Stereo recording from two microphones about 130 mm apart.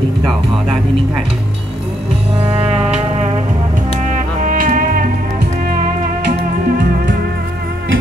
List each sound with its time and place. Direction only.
2.4 s music: 50° right (ahead or behind)
4.5 s music: 90° right